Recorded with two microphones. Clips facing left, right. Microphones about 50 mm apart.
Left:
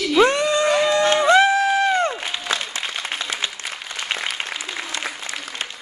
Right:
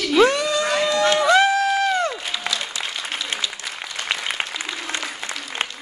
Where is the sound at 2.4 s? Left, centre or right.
Left.